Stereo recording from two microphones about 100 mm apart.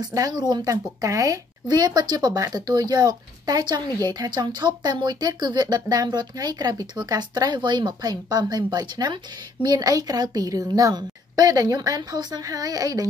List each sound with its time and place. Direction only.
0.0 s speech: 40° right (ahead or behind)